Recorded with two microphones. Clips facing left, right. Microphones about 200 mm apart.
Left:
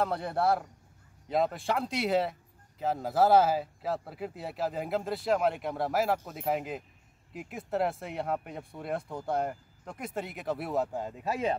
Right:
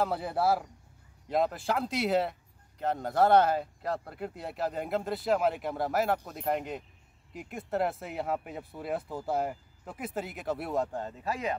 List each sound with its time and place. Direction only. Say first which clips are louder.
0.0 s speech: even; 5° right (ahead or behind)
11.2 s speech: left 3 dB; 25° left (ahead or behind)